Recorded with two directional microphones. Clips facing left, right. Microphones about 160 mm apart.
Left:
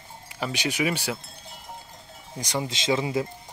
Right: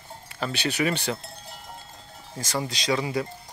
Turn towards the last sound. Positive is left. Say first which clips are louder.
# left 1 dB
turn(degrees=25)  # may be behind; listen again after turning